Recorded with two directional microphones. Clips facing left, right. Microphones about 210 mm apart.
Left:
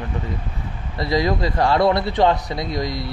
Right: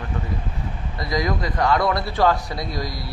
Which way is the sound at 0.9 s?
30° left (ahead or behind).